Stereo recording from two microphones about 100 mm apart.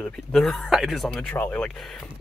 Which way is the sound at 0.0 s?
5° left (ahead or behind).